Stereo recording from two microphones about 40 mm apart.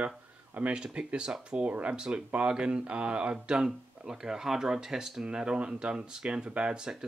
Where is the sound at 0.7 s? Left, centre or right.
Right.